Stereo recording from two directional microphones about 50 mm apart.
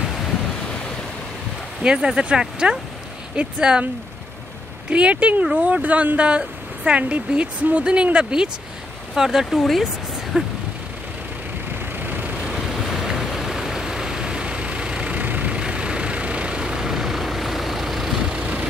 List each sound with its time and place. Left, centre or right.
1.8 s speech: centre
4.8 s speech: right
11.8 s vehicle: right
12.4 s vehicle: centre
18.3 s vehicle: right